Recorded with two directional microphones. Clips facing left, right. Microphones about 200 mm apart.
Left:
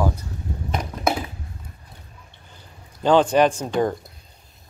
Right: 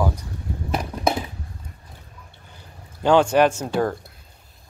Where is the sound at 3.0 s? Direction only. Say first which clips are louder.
Even; 10° right (ahead or behind).